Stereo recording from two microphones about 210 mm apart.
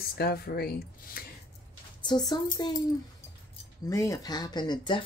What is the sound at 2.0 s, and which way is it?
Speech, 20° left (ahead or behind).